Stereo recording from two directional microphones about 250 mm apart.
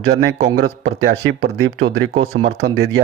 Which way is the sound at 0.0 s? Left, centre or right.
Right.